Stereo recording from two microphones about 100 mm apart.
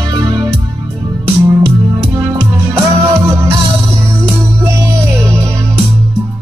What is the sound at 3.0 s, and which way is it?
Music, 30° right (ahead or behind).